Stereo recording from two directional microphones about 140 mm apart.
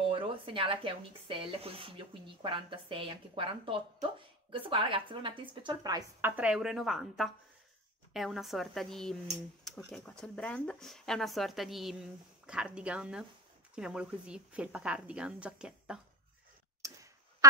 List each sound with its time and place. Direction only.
0.1 s speech: 40° right (ahead or behind)
6.2 s a woman's voice: 10° right (ahead or behind)
16.8 s clock: 25° right (ahead or behind)